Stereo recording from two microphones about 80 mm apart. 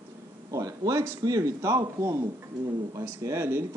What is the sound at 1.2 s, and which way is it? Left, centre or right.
Speech, right.